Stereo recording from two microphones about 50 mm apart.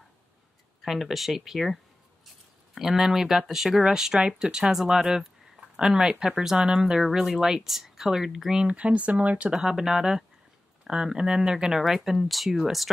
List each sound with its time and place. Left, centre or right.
0.8 s speech: centre
8.7 s speech: right
9.5 s speech: centre